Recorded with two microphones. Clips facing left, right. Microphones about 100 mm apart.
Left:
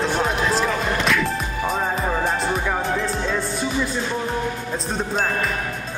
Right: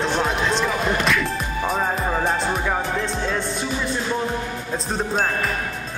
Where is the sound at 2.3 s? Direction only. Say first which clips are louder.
Even; centre (ahead or behind).